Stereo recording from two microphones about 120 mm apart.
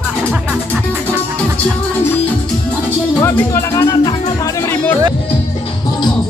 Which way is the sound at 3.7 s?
35° left (ahead or behind).